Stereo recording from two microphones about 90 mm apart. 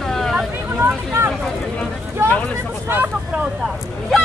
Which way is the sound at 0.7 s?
25° right (ahead or behind).